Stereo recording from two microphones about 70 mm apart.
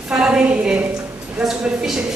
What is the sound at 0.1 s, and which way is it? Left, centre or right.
Speech, centre.